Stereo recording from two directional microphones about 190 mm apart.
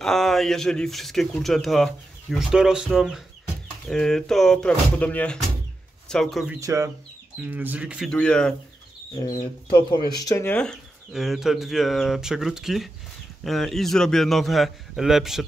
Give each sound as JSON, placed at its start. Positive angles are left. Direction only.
{"t": 0.0, "sound": "speech", "side_deg": 0}
{"t": 6.6, "sound": "speech", "side_deg": -15}
{"t": 9.7, "sound": "speech", "side_deg": 25}